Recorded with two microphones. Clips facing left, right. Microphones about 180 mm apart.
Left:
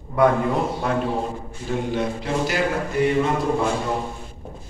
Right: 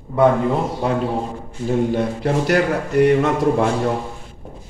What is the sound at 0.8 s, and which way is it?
Speech, 30° right (ahead or behind).